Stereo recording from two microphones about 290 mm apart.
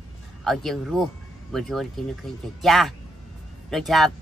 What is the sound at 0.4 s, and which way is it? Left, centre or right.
Speech, centre.